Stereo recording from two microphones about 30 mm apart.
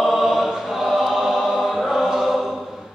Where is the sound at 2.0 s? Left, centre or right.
Centre.